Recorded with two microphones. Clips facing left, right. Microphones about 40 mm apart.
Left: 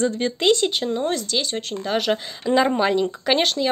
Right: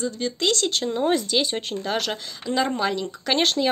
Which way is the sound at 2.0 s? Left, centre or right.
Centre.